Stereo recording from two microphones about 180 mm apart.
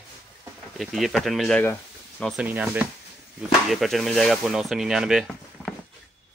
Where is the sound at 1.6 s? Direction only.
10° left (ahead or behind).